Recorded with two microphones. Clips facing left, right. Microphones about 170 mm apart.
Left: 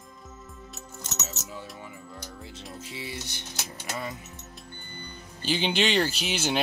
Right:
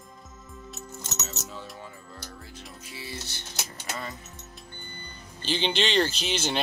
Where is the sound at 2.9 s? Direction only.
15° left (ahead or behind).